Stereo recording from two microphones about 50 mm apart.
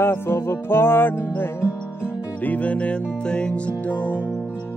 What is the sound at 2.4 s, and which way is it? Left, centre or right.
Music, left.